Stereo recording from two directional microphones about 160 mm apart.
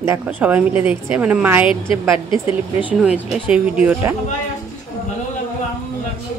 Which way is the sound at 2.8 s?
10° right (ahead or behind).